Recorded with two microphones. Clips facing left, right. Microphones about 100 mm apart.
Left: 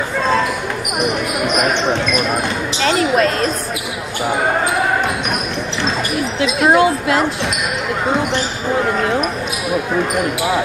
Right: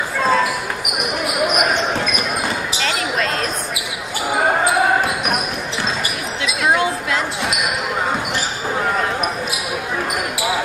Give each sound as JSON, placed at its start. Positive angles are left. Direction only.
{"t": 0.2, "sound": "basketball bounce", "side_deg": -5}
{"t": 1.5, "sound": "basketball bounce", "side_deg": -5}
{"t": 6.4, "sound": "basketball bounce", "side_deg": 40}